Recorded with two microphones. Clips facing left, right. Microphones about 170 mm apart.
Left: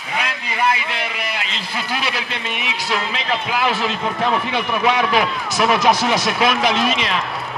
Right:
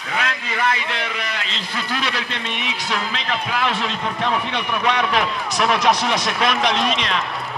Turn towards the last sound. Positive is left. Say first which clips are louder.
# left 2 dB
turn(degrees=5)  # may be behind; listen again after turning